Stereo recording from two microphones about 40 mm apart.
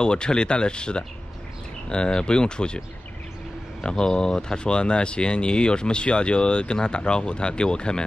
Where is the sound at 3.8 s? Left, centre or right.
Centre.